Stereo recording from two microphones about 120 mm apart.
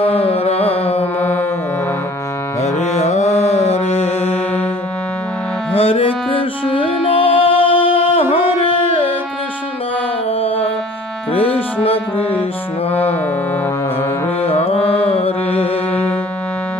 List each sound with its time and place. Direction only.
0.0 s carnatic music: 55° left (ahead or behind)
2.6 s mantra: 65° left (ahead or behind)
5.7 s music: 50° left (ahead or behind)
10.4 s music: 55° left (ahead or behind)
12.9 s music: 15° left (ahead or behind)
14.4 s music: 55° left (ahead or behind)
15.0 s mantra: 55° left (ahead or behind)
15.9 s music: 10° left (ahead or behind)